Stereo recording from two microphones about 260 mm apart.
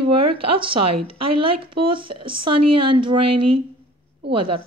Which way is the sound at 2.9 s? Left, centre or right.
Centre.